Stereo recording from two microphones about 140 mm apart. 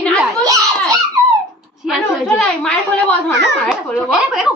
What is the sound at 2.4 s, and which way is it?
A woman's voice, 10° left (ahead or behind).